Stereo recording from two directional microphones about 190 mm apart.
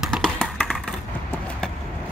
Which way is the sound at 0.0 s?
Centre (ahead or behind).